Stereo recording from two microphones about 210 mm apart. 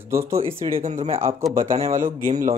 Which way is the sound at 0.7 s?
35° right (ahead or behind).